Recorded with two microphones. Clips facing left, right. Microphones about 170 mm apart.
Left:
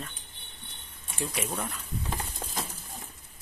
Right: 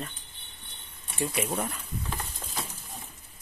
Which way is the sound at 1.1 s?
5° right (ahead or behind).